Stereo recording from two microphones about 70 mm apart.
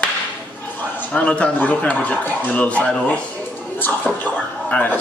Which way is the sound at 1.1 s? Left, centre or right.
Centre.